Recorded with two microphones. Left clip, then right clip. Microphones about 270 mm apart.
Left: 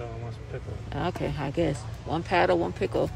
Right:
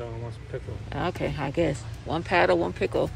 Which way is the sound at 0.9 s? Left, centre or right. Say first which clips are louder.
Right 1 dB; centre.